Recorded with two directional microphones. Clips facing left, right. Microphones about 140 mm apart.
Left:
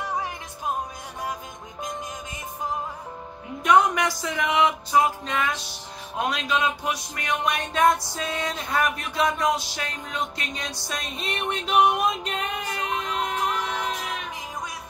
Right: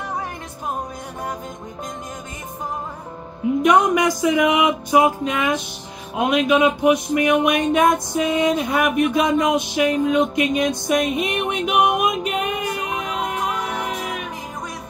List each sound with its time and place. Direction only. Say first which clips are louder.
3.6 s a woman's voice: right 3 dB; 15° right (ahead or behind)
4.2 s music: right 4 dB; 15° right (ahead or behind)